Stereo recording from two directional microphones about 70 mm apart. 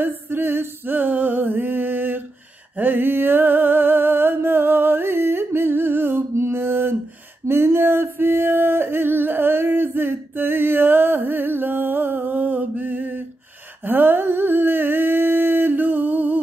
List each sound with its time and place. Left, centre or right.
0.0 s music: right
7.4 s a sound: right
13.8 s humming: right